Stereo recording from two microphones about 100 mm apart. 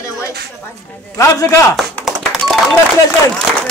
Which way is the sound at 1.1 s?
30° left (ahead or behind).